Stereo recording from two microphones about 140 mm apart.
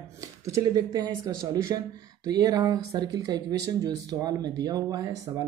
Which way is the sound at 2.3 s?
25° right (ahead or behind).